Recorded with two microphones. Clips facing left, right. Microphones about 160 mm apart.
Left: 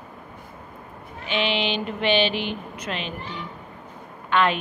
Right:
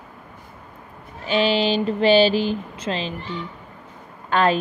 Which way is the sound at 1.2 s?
40° right (ahead or behind).